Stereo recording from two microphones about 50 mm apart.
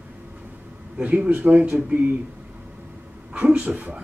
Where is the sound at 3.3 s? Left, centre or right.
Right.